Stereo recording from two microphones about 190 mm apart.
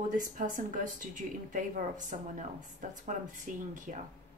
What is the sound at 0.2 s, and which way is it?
A woman's voice, 45° right (ahead or behind).